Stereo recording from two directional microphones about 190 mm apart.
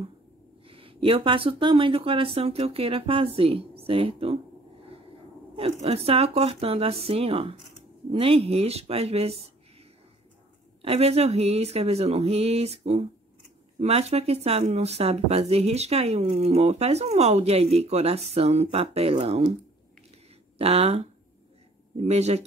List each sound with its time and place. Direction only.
0.7 s speech: 30° right (ahead or behind)
5.6 s speech: 30° right (ahead or behind)
10.8 s speech: 30° right (ahead or behind)
20.5 s speech: 30° right (ahead or behind)